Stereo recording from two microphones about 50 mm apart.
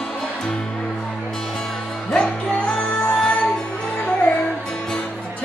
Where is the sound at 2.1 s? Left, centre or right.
Centre.